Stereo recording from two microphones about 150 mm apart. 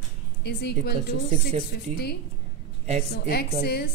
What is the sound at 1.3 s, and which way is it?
Speech, 45° right (ahead or behind).